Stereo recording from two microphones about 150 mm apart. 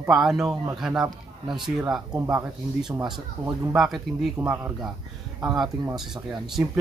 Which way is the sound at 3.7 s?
Centre (ahead or behind).